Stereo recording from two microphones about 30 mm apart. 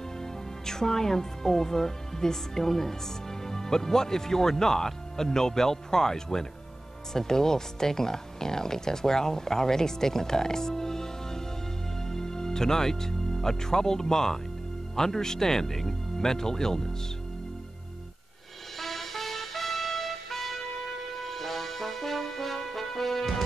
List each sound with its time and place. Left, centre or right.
0.2 s a woman's voice: centre
18.8 s music: centre